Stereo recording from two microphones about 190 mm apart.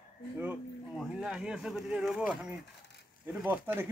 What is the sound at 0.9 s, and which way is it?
Speech, centre (ahead or behind).